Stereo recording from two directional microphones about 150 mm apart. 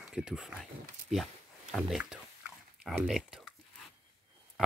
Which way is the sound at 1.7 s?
Centre (ahead or behind).